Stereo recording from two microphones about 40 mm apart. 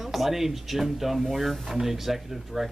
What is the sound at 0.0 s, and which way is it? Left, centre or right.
Speech, centre.